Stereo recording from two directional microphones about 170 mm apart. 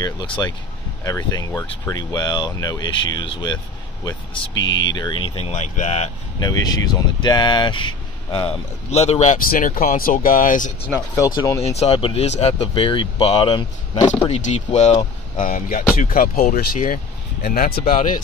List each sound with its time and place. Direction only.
0.0 s speech: 25° left (ahead or behind)
4.6 s speech: 90° left
4.9 s speech: 25° left (ahead or behind)
6.4 s speech: 20° left (ahead or behind); by 9.4 s 40° left (ahead or behind)
9.5 s speech: 55° left (ahead or behind)
11.0 s speech: 25° left (ahead or behind)
11.6 s speech: 40° left (ahead or behind)
14.2 s speech: 40° left (ahead or behind)
15.3 s speech: 55° left (ahead or behind)